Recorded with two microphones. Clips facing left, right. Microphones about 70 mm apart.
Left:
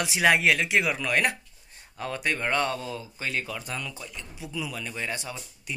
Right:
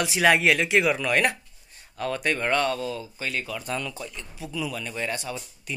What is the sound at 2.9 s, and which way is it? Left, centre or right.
Speech, left.